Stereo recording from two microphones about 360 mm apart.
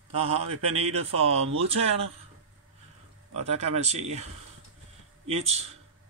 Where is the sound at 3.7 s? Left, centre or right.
Centre.